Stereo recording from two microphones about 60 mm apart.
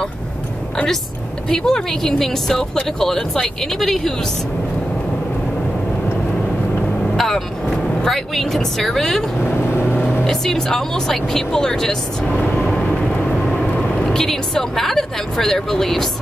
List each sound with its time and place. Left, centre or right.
1.5 s speech: centre
7.2 s speech: centre
9.8 s vehicle: left
10.2 s speech: centre
12.5 s vehicle: centre
13.5 s a woman's voice: centre